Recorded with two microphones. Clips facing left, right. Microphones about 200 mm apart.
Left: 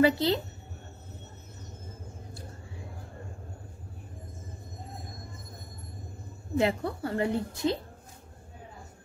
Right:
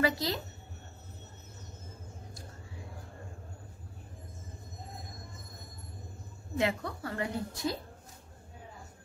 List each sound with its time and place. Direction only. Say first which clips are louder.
0.0 s a woman's voice: left 7 dB; 30° left (ahead or behind)
6.6 s a woman's voice: left 4 dB; 30° left (ahead or behind)